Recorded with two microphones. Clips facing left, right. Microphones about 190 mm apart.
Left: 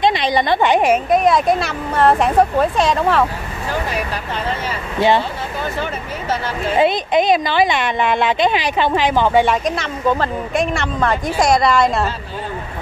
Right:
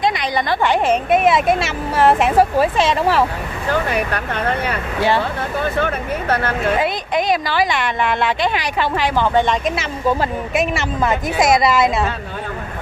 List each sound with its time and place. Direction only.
0.0 s a woman's voice: 25° left (ahead or behind)
1.1 s a woman's voice: 5° right (ahead or behind)
3.9 s speech: 60° right (ahead or behind)
5.8 s speech: 60° right (ahead or behind)
6.8 s speech: 20° left (ahead or behind)
9.7 s a woman's voice: 5° right (ahead or behind)